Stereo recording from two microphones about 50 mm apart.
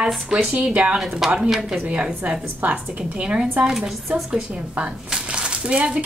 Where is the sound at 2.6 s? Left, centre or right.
Right.